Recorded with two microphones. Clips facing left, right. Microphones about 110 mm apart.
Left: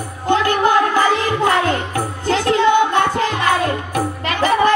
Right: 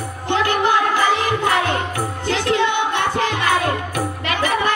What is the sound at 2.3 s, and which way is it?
Music, 40° left (ahead or behind).